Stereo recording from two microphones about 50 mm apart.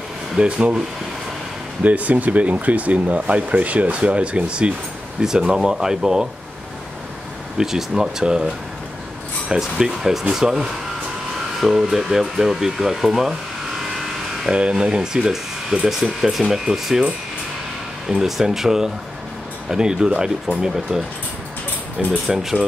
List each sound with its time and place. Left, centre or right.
0.4 s speech: right
1.8 s speech: right; by 6.2 s centre
7.5 s speech: centre
14.5 s speech: centre
16.0 s speech: centre
18.0 s speech: centre